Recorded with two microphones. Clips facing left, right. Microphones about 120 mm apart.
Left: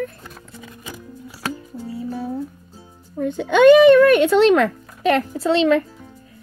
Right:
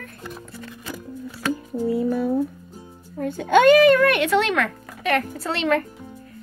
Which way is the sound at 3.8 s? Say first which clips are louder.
Left 5 dB; 25° left (ahead or behind).